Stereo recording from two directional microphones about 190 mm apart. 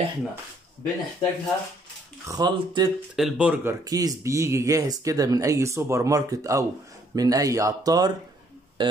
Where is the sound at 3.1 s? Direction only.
5° right (ahead or behind).